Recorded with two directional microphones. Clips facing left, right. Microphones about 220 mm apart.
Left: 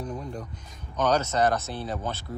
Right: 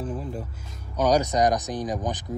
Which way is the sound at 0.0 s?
5° right (ahead or behind).